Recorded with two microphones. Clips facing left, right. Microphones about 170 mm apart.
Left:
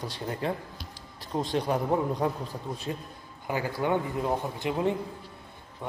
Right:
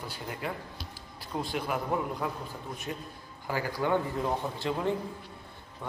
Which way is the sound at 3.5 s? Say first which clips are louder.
Left 1 dB; 25° left (ahead or behind).